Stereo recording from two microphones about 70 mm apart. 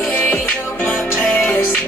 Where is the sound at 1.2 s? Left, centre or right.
Left.